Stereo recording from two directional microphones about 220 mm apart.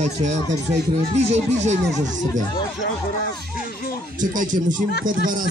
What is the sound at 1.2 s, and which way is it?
Speech, 30° right (ahead or behind).